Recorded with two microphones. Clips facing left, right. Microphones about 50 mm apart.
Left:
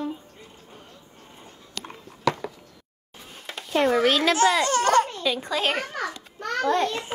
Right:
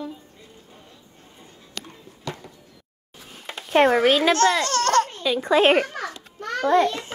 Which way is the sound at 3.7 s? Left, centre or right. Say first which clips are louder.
Right 4 dB; right.